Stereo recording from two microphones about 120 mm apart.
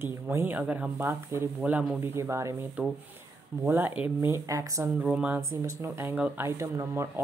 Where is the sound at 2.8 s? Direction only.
10° right (ahead or behind); by 4.9 s 25° right (ahead or behind).